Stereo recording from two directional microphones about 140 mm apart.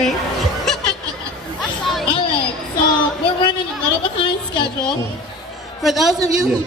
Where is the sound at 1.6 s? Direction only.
Centre (ahead or behind).